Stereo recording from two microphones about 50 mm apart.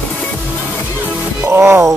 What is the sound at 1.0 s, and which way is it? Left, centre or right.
Music, right.